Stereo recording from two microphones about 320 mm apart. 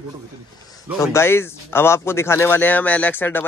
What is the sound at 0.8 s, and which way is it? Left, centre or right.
Speech, centre.